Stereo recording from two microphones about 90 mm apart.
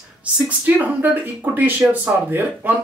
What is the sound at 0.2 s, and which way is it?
Speech, 15° right (ahead or behind).